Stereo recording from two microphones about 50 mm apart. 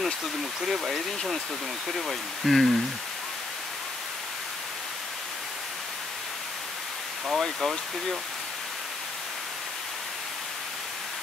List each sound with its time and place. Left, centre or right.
0.6 s speech: centre
7.3 s speech: centre